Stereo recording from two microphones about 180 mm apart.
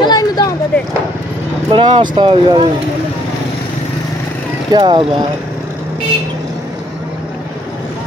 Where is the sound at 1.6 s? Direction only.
25° right (ahead or behind).